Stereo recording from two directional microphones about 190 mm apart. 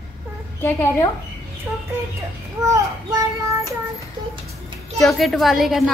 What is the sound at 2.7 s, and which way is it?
A woman's voice, 15° right (ahead or behind).